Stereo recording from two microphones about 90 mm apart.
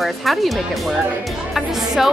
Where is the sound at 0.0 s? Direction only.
Centre (ahead or behind).